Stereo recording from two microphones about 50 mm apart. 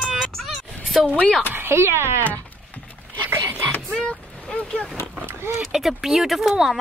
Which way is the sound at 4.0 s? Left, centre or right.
Left.